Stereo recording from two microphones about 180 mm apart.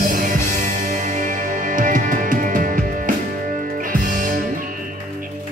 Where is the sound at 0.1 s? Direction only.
45° right (ahead or behind).